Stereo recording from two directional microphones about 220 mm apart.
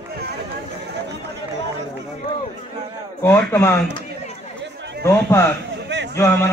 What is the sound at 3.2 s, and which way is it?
Speech, 10° left (ahead or behind).